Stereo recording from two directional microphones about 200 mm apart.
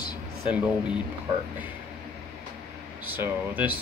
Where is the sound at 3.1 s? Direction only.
10° right (ahead or behind).